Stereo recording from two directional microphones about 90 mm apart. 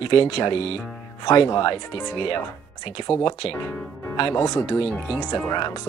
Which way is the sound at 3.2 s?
80° left.